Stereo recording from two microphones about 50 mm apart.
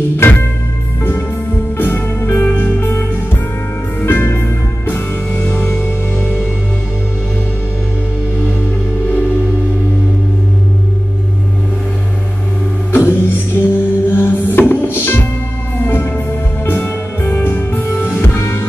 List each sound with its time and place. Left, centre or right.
0.2 s music: left
1.8 s music: left
5.4 s music: left
5.7 s music: left
12.9 s music: left
16.6 s music: left